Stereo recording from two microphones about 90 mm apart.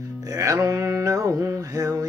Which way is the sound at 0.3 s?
35° right (ahead or behind).